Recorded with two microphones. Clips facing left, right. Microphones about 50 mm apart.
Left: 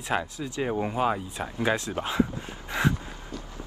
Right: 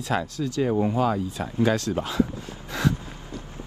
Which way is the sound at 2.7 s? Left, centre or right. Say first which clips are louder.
Right 1 dB; left.